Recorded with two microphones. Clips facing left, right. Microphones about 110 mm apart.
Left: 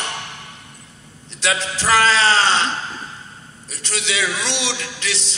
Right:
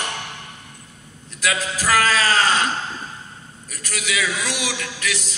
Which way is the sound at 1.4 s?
30° left (ahead or behind).